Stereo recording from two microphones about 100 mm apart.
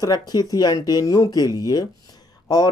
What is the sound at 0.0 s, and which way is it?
Speech, 45° left (ahead or behind).